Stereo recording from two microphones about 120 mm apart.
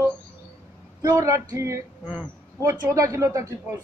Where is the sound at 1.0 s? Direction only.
30° right (ahead or behind).